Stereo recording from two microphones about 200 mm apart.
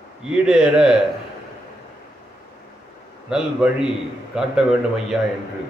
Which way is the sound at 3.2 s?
5° right (ahead or behind).